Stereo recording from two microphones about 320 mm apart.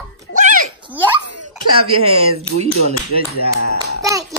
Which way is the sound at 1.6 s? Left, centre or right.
Right.